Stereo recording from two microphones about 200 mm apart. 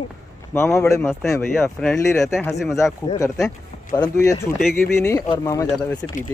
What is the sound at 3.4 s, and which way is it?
Speech, 20° left (ahead or behind).